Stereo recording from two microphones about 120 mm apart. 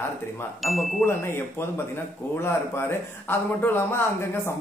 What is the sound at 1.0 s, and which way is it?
Speech, 20° left (ahead or behind).